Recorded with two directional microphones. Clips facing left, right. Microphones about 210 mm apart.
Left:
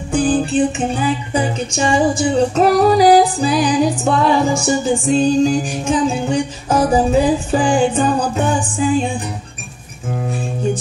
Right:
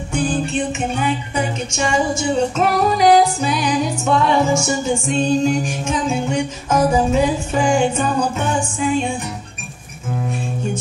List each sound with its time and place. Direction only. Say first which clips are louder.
0.1 s music: left 5 dB; 35° left (ahead or behind)